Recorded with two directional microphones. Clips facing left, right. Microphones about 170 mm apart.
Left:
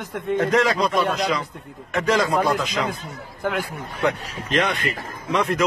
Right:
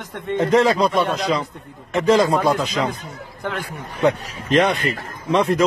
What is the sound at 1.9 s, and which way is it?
Speech, 30° right (ahead or behind).